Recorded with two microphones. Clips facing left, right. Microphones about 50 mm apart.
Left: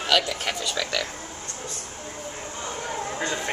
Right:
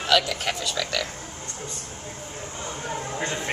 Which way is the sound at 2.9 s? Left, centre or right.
Centre.